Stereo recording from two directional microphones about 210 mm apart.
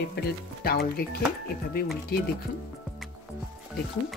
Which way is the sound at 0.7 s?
45° left (ahead or behind).